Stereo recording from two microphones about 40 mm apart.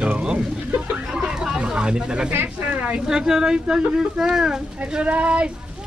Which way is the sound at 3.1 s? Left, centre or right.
Centre.